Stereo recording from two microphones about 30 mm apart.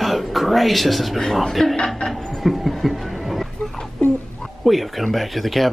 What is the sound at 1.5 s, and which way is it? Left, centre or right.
Speech, centre.